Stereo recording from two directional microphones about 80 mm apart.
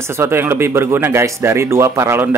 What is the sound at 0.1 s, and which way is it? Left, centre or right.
Speech, right.